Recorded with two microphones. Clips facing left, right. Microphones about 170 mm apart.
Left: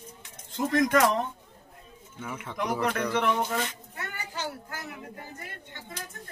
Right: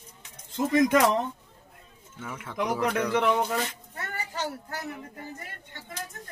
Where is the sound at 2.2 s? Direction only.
Centre (ahead or behind).